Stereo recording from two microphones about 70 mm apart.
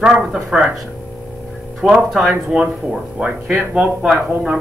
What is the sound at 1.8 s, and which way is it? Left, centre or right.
Speech, centre.